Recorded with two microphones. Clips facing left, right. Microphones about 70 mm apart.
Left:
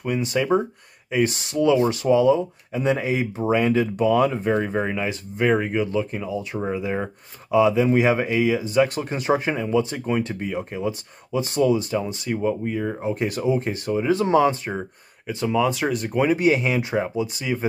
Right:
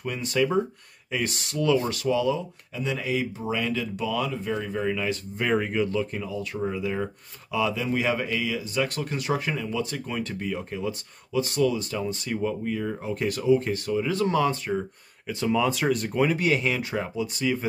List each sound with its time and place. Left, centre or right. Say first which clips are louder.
0.0 s speech: left 2 dB; centre
5.4 s speech: left 4 dB; centre
15.2 s speech: left 3 dB; centre